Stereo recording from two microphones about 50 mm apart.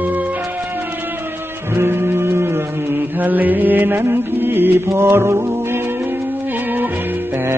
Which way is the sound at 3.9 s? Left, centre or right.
Right.